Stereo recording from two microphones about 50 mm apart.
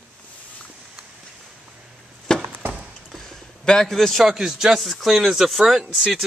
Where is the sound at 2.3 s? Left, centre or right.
Centre.